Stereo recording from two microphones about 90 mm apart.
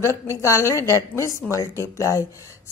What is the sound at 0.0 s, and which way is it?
A woman's voice, 30° left (ahead or behind).